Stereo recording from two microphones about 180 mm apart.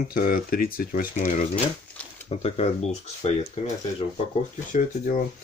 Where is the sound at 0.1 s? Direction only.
55° left (ahead or behind).